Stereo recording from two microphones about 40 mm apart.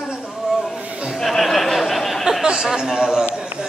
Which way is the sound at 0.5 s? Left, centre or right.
Centre.